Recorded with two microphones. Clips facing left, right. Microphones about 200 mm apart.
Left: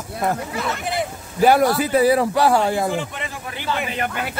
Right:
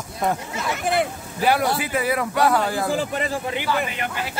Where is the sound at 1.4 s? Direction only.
45° left (ahead or behind); by 2.8 s 25° left (ahead or behind).